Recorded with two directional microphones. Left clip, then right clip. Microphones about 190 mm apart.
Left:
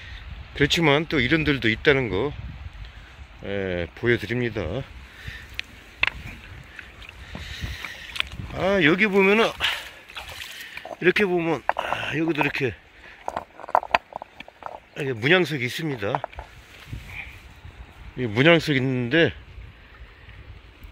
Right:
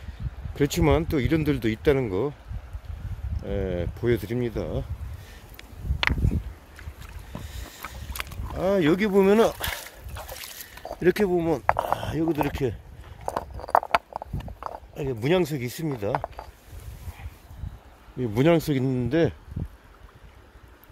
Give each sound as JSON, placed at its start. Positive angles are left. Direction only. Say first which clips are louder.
{"t": 0.6, "sound": "speech", "louder": "left 3 dB", "side_deg": -15}
{"t": 3.4, "sound": "speech", "louder": "left 2 dB", "side_deg": -5}
{"t": 7.3, "sound": "boat", "louder": "left 7 dB", "side_deg": -10}
{"t": 10.8, "sound": "speech", "louder": "left 2 dB", "side_deg": -20}
{"t": 13.2, "sound": "a sound", "louder": "right 1 dB", "side_deg": -35}
{"t": 14.1, "sound": "a sound", "louder": "right 1 dB", "side_deg": -10}
{"t": 18.1, "sound": "speech", "louder": "left 4 dB", "side_deg": -10}